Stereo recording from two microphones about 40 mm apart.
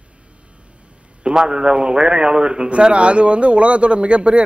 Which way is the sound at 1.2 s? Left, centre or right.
Centre.